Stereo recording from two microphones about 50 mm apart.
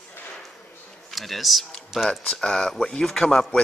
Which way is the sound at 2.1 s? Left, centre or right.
Centre.